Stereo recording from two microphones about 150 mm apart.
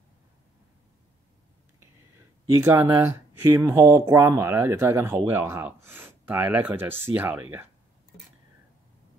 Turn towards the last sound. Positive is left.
turn(degrees=-15)  # may be behind; listen again after turning